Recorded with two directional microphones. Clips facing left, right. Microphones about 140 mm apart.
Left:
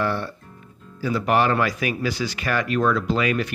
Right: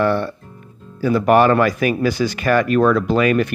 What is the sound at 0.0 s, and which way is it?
Speech, 60° right (ahead or behind).